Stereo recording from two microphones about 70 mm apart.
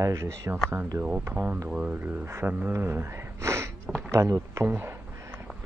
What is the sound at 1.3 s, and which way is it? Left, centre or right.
Speech, right.